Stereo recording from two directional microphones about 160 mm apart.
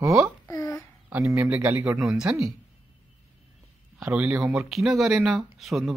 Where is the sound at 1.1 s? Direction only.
15° right (ahead or behind).